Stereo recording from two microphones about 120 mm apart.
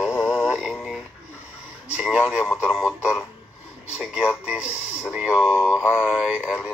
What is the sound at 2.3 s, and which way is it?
Radio, 5° right (ahead or behind).